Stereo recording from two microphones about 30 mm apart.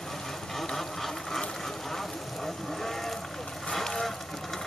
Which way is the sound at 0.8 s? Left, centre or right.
Centre.